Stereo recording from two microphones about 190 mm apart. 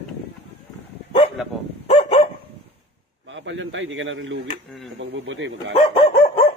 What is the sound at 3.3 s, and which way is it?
A man's voice, 80° right.